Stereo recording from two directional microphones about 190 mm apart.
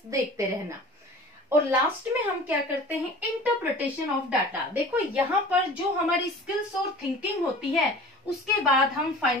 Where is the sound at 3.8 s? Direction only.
5° right (ahead or behind).